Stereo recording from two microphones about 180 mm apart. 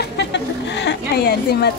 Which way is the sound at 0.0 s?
70° left (ahead or behind).